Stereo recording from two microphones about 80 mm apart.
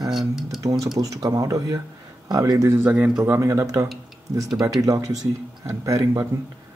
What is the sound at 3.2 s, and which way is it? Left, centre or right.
Speech, right.